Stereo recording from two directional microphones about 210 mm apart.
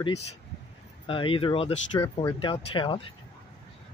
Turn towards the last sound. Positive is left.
turn(degrees=25)  # may be behind; listen again after turning